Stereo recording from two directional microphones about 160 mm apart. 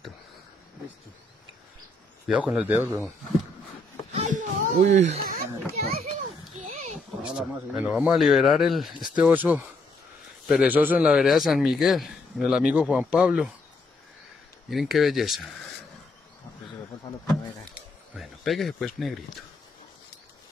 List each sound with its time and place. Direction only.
2.2 s speech: 5° right (ahead or behind)
4.1 s a sound: 50° right (ahead or behind)
7.2 s a man's voice: 5° right (ahead or behind)
14.7 s a man's voice: centre (ahead or behind)
18.1 s speech: centre (ahead or behind)